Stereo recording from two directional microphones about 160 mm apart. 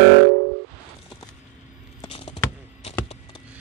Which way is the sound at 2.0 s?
40° left (ahead or behind).